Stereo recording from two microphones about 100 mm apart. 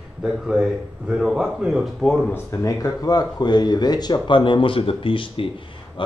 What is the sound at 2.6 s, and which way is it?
A man's voice, 40° left (ahead or behind).